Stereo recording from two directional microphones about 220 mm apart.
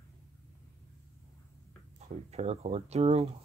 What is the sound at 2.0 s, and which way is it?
Speech, 30° right (ahead or behind).